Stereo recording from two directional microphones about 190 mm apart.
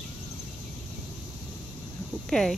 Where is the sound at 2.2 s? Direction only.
Centre (ahead or behind).